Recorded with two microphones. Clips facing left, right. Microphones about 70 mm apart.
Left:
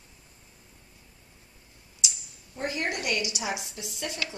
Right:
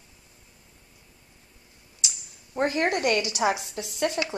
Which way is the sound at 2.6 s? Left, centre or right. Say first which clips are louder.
Right 7 dB; right.